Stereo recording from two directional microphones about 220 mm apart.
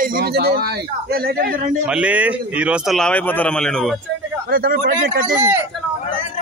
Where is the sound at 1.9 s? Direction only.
5° right (ahead or behind).